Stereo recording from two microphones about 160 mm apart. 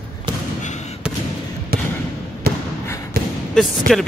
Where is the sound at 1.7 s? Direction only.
70° right (ahead or behind).